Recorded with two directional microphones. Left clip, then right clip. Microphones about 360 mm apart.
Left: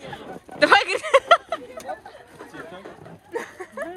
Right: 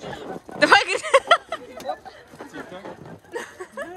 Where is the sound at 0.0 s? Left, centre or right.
Centre.